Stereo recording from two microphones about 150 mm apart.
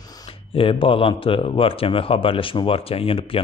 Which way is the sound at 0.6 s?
35° left (ahead or behind).